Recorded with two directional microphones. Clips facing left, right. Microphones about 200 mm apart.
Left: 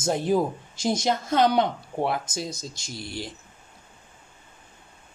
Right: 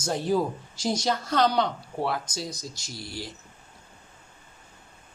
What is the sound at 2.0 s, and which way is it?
Speech, 20° left (ahead or behind).